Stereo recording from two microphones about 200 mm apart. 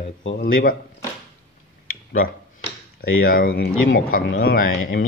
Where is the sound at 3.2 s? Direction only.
50° left (ahead or behind).